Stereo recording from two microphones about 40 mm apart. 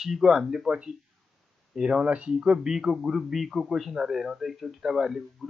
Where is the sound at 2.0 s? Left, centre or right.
Right.